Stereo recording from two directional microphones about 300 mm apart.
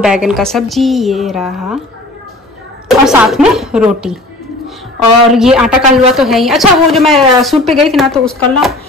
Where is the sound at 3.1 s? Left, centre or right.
Centre.